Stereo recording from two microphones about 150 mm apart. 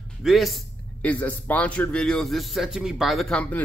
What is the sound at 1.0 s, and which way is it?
A man's voice, 10° left (ahead or behind).